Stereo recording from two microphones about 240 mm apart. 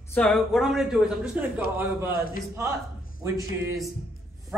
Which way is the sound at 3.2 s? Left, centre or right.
Centre.